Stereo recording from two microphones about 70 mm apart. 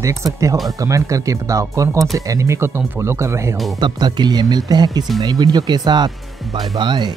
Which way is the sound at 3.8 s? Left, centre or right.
Right.